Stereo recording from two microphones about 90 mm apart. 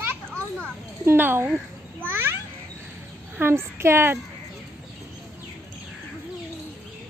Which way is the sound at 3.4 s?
30° right (ahead or behind).